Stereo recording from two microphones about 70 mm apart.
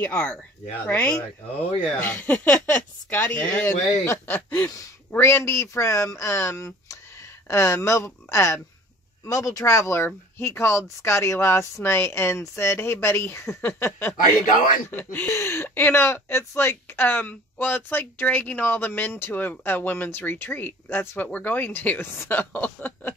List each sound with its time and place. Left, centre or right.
0.0 s speech: left
3.6 s speech: left
4.3 s a sound: centre
5.1 s speech: left
15.2 s speech: left